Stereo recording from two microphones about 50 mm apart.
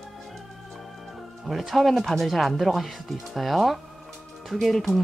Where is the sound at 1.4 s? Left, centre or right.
Centre.